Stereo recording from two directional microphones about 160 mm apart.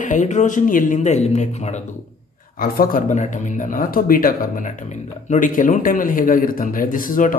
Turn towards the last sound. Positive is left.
turn(degrees=60)  # may be behind; listen again after turning